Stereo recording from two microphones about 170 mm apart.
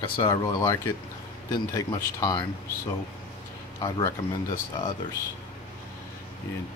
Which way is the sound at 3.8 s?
20° left (ahead or behind).